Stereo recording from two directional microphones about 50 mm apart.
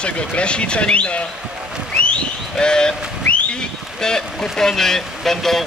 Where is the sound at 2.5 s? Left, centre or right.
Centre.